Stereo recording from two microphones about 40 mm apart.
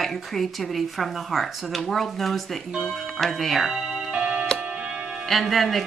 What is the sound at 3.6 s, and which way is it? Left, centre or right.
Music, centre.